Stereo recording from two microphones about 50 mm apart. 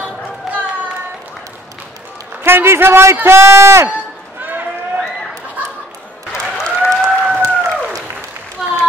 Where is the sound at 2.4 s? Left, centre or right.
Right.